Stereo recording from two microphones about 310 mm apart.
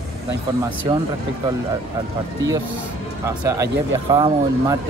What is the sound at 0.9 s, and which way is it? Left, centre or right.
Speech, centre.